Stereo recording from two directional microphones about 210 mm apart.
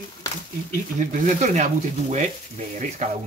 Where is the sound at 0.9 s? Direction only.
35° right (ahead or behind).